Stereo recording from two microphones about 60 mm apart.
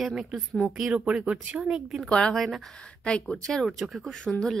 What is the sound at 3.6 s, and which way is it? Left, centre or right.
Speech, centre.